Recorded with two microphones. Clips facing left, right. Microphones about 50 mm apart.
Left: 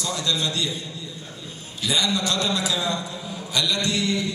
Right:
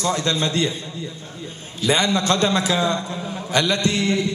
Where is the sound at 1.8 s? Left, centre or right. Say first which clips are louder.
Right 5 dB; right.